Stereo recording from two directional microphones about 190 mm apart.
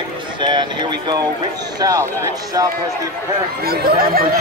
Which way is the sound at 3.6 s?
50° right (ahead or behind).